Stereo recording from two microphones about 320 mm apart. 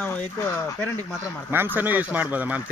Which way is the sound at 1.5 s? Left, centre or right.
Centre.